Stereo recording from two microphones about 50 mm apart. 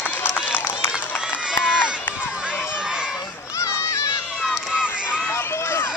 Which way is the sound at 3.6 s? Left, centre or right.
Left.